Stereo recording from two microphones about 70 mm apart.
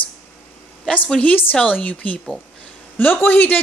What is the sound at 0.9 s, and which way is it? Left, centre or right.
A woman's voice, centre.